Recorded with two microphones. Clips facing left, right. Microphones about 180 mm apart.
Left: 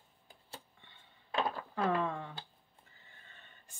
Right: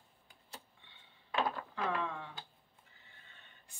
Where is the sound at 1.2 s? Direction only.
35° left (ahead or behind).